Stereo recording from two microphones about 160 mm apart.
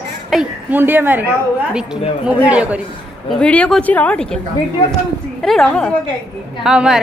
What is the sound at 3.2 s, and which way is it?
Speech, 5° left (ahead or behind).